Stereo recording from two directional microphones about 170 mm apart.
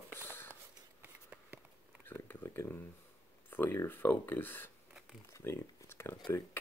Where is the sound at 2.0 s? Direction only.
15° left (ahead or behind).